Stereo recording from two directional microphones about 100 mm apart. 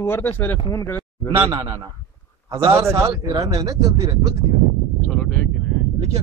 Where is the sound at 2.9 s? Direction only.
30° right (ahead or behind).